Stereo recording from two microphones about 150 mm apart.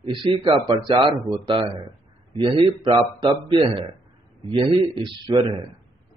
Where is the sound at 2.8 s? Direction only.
35° right (ahead or behind).